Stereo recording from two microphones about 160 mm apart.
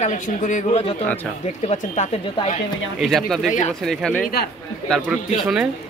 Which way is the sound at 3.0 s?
Centre (ahead or behind).